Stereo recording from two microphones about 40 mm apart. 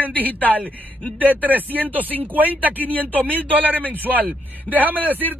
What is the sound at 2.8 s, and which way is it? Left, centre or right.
Speech, left.